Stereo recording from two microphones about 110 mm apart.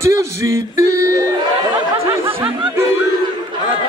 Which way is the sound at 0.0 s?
25° right (ahead or behind).